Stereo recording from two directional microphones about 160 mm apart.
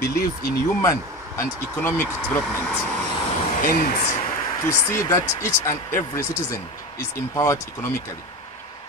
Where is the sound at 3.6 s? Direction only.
60° left (ahead or behind).